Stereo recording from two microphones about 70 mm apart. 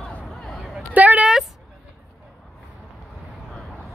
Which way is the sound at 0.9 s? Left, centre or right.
Right.